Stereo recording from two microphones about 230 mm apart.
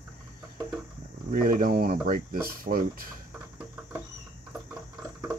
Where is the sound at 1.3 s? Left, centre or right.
Right.